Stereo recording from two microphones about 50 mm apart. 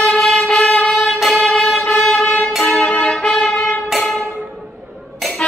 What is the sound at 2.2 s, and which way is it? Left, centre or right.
Music, left.